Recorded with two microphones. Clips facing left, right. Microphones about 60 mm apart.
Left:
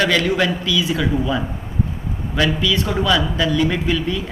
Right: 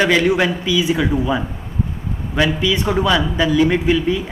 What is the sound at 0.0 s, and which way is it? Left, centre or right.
A man's voice, centre.